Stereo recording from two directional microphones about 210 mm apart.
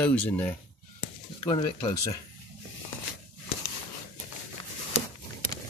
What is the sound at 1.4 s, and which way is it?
Speech, 25° left (ahead or behind).